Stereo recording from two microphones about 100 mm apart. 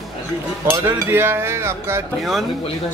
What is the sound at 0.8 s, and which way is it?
Speech, 20° right (ahead or behind).